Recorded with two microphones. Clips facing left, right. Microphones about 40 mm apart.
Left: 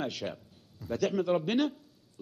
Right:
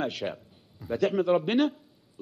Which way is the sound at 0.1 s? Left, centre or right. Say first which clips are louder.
Right 4 dB; centre.